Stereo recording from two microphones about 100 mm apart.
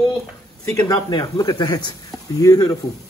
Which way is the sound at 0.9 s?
40° left (ahead or behind).